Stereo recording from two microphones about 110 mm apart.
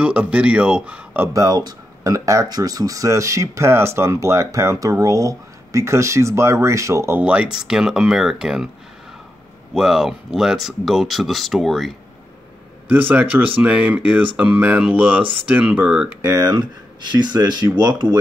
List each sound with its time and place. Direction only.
0.0 s speech: 10° right (ahead or behind)
1.3 s speech: 35° right (ahead or behind)
7.2 s speech: 10° right (ahead or behind)
9.8 s speech: 5° right (ahead or behind)
13.1 s speech: 15° right (ahead or behind)
16.2 s speech: 30° right (ahead or behind)